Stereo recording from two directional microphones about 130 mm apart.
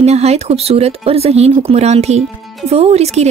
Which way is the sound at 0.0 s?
55° right (ahead or behind).